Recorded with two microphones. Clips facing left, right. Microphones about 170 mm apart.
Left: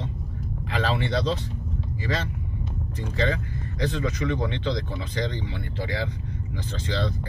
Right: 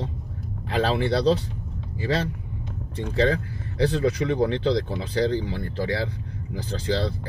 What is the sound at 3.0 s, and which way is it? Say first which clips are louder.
Speech: right 4 dB; 35° right (ahead or behind).